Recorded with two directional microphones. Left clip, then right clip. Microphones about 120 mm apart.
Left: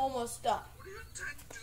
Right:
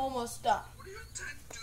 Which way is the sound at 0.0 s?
Centre (ahead or behind).